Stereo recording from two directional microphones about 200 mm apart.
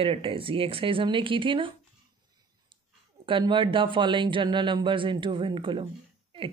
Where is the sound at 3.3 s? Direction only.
25° right (ahead or behind).